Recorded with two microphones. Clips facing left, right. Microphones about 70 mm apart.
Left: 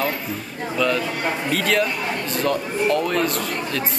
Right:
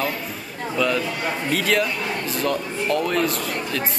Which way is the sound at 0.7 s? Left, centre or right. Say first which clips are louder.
Left 1 dB; centre.